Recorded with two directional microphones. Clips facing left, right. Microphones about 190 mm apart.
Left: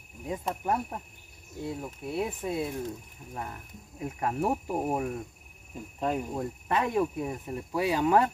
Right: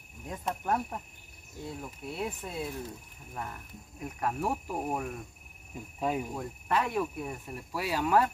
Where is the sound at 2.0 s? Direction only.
20° left (ahead or behind).